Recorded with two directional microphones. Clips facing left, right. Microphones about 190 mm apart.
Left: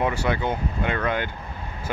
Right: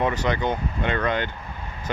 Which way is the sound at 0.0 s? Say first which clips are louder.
Right 1 dB; 10° left (ahead or behind).